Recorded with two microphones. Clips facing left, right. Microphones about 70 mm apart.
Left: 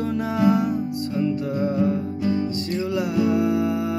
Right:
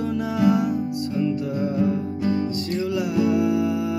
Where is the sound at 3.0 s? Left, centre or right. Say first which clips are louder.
Even; left.